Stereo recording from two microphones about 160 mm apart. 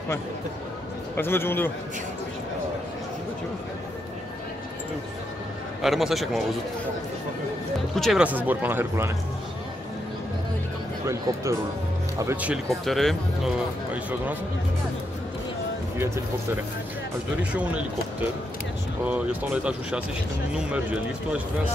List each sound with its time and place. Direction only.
1.1 s a man's voice: 15° left (ahead or behind)
5.8 s speech: centre (ahead or behind)
7.9 s speech: centre (ahead or behind)
11.1 s speech: 20° right (ahead or behind)
12.6 s speech: centre (ahead or behind)
17.4 s speech: 10° right (ahead or behind)
19.0 s speech: 10° right (ahead or behind)